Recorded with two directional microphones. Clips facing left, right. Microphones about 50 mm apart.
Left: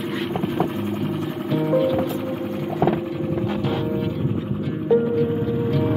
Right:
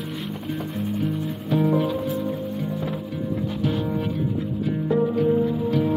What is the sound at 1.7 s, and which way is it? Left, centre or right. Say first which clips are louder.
Music: left 3 dB; centre.